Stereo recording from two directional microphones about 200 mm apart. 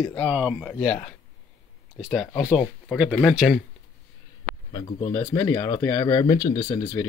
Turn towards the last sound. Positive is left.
turn(degrees=25)  # may be behind; listen again after turning